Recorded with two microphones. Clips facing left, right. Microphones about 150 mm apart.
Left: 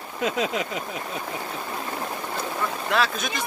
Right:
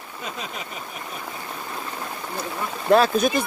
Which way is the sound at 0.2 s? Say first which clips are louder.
Left 9 dB; 90° left.